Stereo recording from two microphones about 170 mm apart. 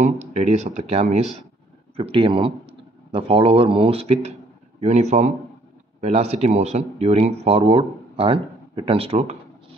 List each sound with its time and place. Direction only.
0.0 s speech: 40° right (ahead or behind)